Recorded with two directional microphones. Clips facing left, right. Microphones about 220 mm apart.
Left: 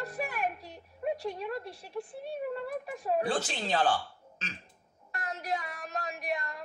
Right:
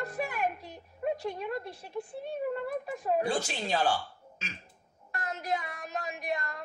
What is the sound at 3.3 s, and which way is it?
Speech, 10° right (ahead or behind).